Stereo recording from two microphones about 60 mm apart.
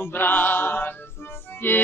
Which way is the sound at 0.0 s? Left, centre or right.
Left.